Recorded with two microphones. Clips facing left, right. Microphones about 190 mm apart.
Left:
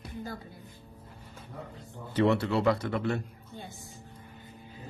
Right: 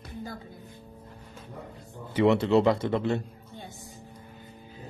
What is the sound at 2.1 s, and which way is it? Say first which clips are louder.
Speech: right 4 dB; 15° right (ahead or behind).